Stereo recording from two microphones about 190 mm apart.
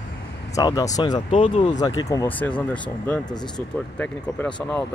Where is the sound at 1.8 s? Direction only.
20° left (ahead or behind).